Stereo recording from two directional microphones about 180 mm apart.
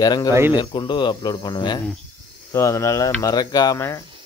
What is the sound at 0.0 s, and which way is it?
Speech, 20° left (ahead or behind).